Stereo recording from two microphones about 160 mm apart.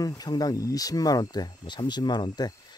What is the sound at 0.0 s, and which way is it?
Speech, 25° left (ahead or behind).